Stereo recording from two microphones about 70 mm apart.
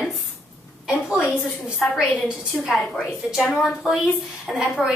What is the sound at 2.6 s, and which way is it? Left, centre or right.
A woman's voice, centre.